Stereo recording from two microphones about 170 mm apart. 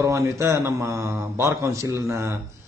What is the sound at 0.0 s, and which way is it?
A man's voice, 15° right (ahead or behind).